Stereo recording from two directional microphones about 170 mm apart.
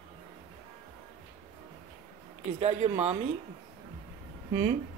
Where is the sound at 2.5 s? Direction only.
40° right (ahead or behind).